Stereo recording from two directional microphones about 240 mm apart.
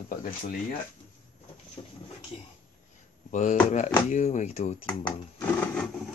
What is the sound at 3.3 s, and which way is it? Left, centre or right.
Speech, left.